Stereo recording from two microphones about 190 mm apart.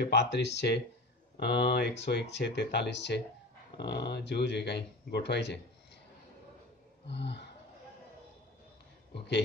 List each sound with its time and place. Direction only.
0.0 s speech: 65° left (ahead or behind)
7.1 s speech: 65° left (ahead or behind)